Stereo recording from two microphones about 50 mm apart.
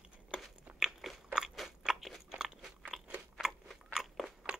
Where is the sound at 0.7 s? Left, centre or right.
Centre.